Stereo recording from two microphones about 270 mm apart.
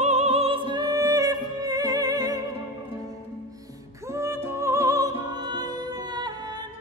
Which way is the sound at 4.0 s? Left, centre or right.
Centre.